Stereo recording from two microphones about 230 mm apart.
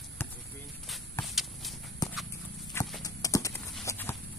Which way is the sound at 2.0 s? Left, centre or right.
Centre.